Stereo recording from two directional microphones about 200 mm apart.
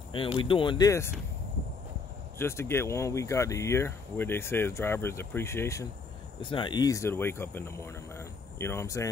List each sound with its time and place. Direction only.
0.4 s speech: 25° left (ahead or behind)
2.3 s speech: 10° left (ahead or behind)
6.4 s speech: 25° left (ahead or behind)